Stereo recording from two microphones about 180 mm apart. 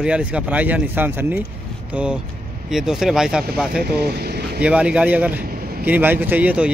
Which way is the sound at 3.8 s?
60° right (ahead or behind).